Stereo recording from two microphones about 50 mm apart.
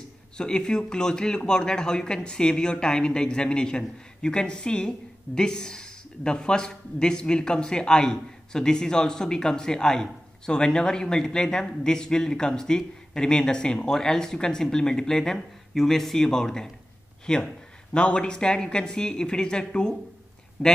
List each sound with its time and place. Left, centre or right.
0.4 s a man's voice: centre